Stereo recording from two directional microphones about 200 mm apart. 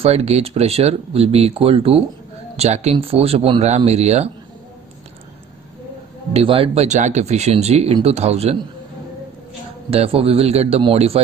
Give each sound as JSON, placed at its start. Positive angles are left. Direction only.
{"t": 0.0, "sound": "speech", "side_deg": -30}
{"t": 6.3, "sound": "speech", "side_deg": -30}
{"t": 9.8, "sound": "a man's voice", "side_deg": -30}